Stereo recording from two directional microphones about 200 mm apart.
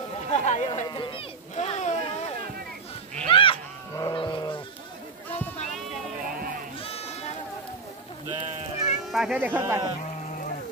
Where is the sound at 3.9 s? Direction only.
20° left (ahead or behind).